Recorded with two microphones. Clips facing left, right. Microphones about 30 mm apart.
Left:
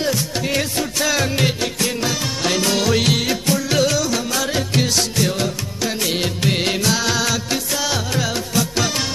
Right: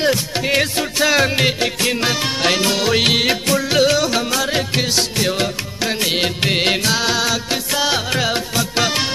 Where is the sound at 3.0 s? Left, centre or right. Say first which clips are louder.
Right 3 dB; right.